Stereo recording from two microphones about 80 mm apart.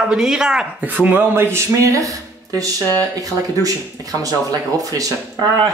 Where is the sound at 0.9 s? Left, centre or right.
Right.